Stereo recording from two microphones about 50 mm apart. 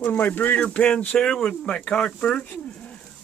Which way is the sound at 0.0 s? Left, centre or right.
Left.